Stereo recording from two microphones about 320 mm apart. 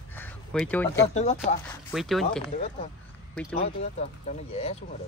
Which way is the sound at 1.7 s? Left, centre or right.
Centre.